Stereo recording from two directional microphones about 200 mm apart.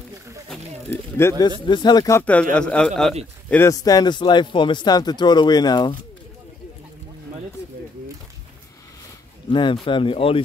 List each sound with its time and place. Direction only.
1.2 s speech: 10° left (ahead or behind)
1.7 s speech: 20° left (ahead or behind)
9.5 s speech: 25° left (ahead or behind)